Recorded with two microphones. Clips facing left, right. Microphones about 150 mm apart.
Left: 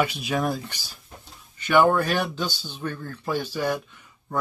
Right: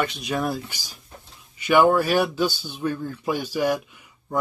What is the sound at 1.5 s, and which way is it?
Speech, 10° right (ahead or behind).